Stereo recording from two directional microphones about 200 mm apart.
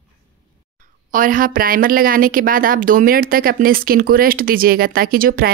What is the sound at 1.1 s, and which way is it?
Speech, 45° right (ahead or behind).